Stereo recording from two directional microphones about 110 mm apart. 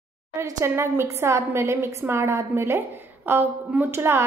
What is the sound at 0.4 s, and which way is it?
A woman's voice, 25° right (ahead or behind).